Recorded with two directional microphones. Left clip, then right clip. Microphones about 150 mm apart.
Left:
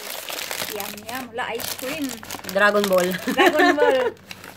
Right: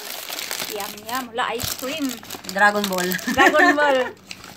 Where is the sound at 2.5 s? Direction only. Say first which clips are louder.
Left 1 dB; 45° left (ahead or behind).